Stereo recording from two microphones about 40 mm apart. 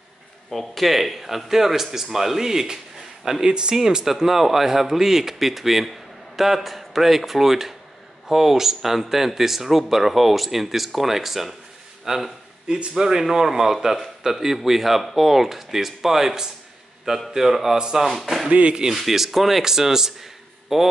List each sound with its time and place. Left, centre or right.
0.5 s speech: centre
12.6 s speech: right; by 18.5 s centre
18.5 s speech: right
18.9 s speech: centre